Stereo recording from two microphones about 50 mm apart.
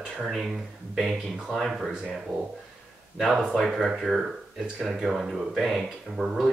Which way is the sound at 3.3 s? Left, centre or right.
Centre.